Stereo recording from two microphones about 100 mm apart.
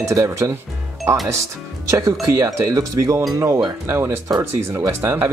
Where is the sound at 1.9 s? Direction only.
30° right (ahead or behind).